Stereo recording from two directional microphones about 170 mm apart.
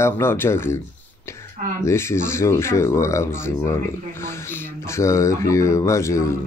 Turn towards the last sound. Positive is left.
turn(degrees=15)  # may be behind; listen again after turning